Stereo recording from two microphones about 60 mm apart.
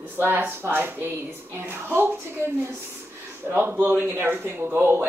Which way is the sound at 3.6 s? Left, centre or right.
Right.